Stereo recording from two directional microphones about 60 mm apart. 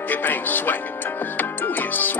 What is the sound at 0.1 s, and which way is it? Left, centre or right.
Speech, left.